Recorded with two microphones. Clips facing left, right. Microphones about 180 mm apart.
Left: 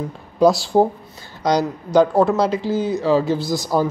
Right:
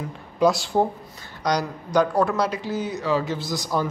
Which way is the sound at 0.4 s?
35° left (ahead or behind).